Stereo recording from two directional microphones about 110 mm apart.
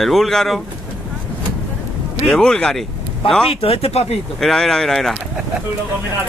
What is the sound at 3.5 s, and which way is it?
Speech, 60° left (ahead or behind).